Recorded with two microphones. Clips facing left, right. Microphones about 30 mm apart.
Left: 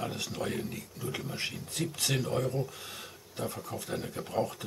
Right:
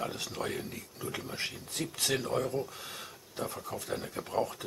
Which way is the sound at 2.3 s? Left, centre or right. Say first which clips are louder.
Even; centre.